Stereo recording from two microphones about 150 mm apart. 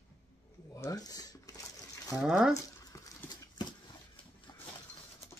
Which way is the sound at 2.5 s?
25° left (ahead or behind).